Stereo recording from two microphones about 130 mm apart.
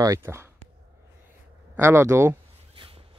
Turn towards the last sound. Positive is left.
turn(degrees=-45)  # may be behind; listen again after turning